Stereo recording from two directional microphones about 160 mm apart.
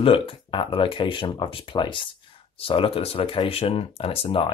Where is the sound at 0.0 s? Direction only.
35° left (ahead or behind).